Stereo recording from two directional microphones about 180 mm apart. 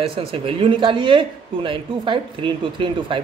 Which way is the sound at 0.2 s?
30° right (ahead or behind).